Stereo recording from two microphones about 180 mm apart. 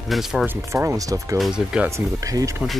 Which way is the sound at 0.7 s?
15° right (ahead or behind).